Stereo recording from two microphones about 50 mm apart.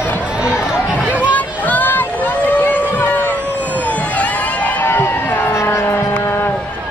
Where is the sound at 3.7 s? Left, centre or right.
Left.